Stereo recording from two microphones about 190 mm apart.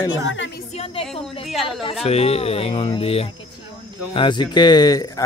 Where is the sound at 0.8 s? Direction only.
30° left (ahead or behind).